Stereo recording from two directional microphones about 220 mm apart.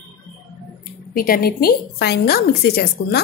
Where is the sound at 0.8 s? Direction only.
40° left (ahead or behind).